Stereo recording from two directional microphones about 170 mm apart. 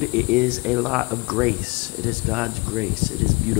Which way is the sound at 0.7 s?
5° left (ahead or behind).